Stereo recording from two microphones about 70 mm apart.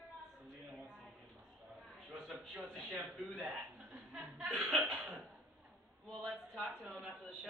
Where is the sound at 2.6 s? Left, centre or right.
Centre.